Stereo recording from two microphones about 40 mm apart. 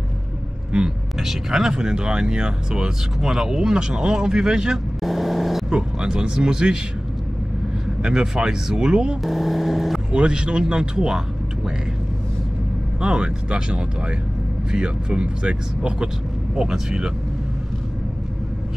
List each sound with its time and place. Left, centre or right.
1.2 s speech: centre
5.0 s vehicle: centre
5.7 s speech: centre
8.0 s speech: right
9.2 s speech: centre
10.1 s speech: right
13.0 s speech: right